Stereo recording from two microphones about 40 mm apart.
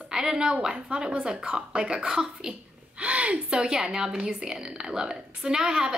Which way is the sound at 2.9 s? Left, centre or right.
Right.